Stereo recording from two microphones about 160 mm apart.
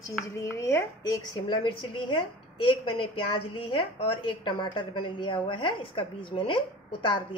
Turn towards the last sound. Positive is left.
turn(degrees=30)  # may be behind; listen again after turning